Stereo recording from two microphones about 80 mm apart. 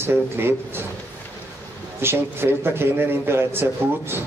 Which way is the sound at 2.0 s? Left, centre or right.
Right.